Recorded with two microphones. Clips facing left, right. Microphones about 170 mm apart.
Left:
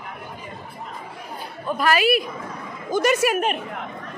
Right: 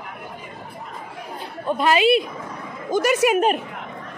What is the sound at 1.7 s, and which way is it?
A woman's voice, 25° right (ahead or behind).